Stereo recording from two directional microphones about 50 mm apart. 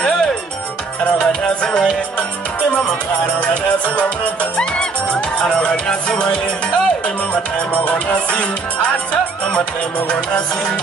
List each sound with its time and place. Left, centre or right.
1.2 s music: left
3.9 s music: left
7.5 s music: left